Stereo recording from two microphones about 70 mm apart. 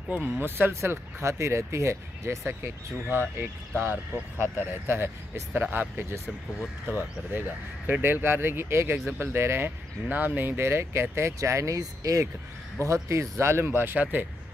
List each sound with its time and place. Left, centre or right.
0.1 s speech: right
4.4 s speech: right